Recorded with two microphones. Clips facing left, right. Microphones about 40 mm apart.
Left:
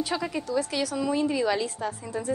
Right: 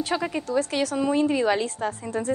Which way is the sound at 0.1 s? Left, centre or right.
Centre.